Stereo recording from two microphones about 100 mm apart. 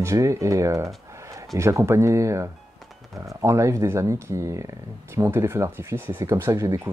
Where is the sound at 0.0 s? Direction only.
30° right (ahead or behind).